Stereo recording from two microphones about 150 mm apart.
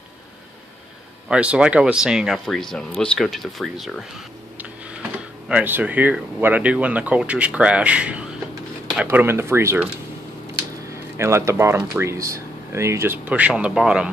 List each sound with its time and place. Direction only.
1.3 s speech: 5° right (ahead or behind)
5.5 s speech: 10° right (ahead or behind)
11.1 s speech: 20° right (ahead or behind)